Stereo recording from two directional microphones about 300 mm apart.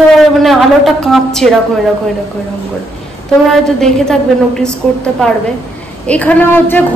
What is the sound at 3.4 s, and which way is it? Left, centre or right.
A woman's voice, centre.